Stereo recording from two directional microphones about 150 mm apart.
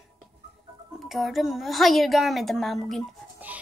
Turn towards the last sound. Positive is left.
turn(degrees=0)  # may be behind; listen again after turning